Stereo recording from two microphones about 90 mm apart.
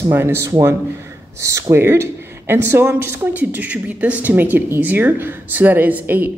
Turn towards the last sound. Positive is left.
turn(degrees=-20)  # may be behind; listen again after turning